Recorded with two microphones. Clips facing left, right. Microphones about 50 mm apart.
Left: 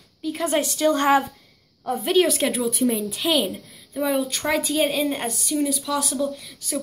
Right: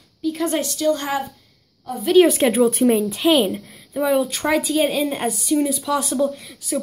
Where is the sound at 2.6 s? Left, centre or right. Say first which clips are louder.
Right 8 dB; right.